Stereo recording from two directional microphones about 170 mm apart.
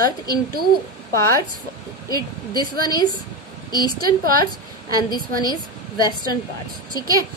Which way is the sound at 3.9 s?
25° left (ahead or behind).